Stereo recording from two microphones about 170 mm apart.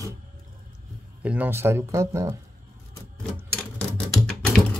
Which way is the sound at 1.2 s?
10° right (ahead or behind).